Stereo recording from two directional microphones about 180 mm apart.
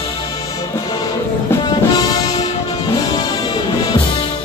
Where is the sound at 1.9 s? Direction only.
20° left (ahead or behind).